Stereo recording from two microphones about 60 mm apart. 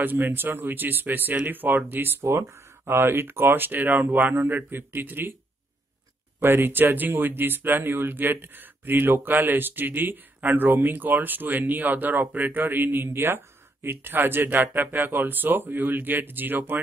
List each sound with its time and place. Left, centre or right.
0.0 s speech: right
6.4 s speech: right